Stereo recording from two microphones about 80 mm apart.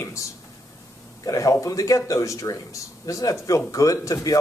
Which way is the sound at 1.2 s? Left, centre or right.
Left.